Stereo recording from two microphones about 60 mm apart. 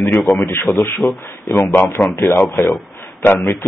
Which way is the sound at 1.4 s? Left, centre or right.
Left.